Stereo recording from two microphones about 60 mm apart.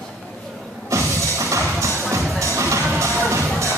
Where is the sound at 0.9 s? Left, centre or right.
Right.